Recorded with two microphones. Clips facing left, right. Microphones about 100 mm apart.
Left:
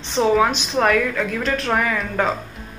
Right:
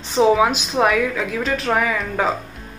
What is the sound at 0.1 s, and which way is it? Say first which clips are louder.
Speech: right 2 dB; 5° right (ahead or behind).